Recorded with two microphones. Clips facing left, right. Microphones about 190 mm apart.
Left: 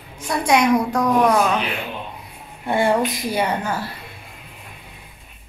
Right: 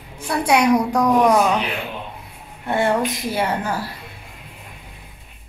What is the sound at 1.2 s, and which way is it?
Speech, 15° right (ahead or behind).